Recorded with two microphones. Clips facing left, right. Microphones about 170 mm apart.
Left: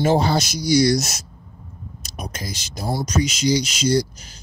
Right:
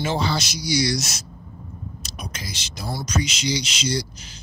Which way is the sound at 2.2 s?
45° left (ahead or behind).